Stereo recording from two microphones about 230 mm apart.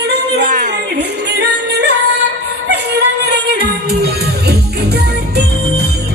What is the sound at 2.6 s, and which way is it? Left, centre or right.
Music, right.